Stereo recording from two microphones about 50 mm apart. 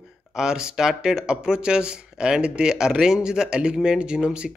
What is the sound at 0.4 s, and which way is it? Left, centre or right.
Speech, centre.